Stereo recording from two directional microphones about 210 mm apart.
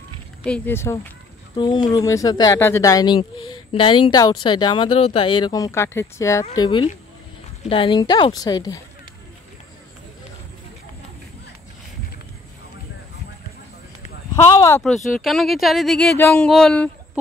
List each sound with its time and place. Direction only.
0.4 s speech: 5° left (ahead or behind)
1.6 s speech: 20° left (ahead or behind)
14.8 s speech: centre (ahead or behind)